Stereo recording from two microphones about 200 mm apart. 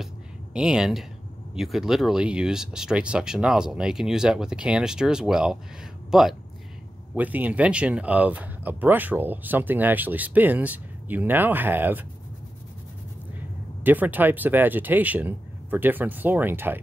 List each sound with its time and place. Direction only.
0.0 s a sound: 5° right (ahead or behind)
1.5 s speech: centre (ahead or behind)
13.8 s speech: 10° right (ahead or behind)